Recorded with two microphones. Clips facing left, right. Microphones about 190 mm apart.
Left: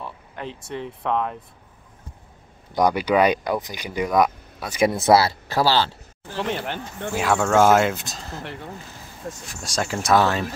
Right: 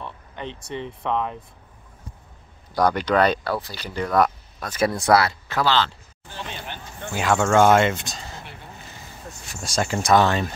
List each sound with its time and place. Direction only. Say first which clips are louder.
0.0 s speech: even; centre (ahead or behind)
2.7 s speech: left 1 dB; 10° left (ahead or behind); by 5.9 s 35° left (ahead or behind)
6.3 s speech: left 9 dB; 70° left (ahead or behind)
7.2 s speech: even; centre (ahead or behind)
9.5 s speech: right 2 dB; centre (ahead or behind)